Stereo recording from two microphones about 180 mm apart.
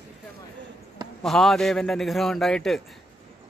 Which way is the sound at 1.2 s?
Centre (ahead or behind).